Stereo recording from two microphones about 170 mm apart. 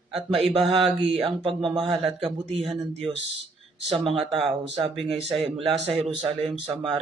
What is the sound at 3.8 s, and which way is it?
Speech, centre (ahead or behind).